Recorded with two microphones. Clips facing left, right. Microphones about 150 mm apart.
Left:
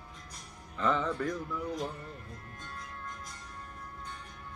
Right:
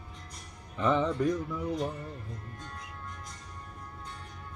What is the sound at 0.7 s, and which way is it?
Speech, 20° right (ahead or behind).